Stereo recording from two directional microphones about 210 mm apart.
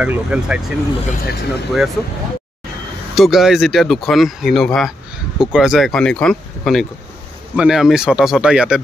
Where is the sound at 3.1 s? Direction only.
Centre (ahead or behind).